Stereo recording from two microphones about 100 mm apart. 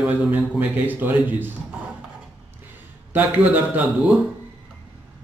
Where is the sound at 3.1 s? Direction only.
15° right (ahead or behind).